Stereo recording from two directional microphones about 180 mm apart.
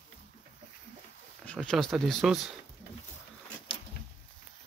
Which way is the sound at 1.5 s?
5° left (ahead or behind).